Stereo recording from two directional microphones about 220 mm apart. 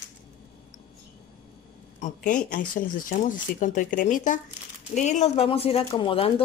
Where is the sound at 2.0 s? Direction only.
35° left (ahead or behind).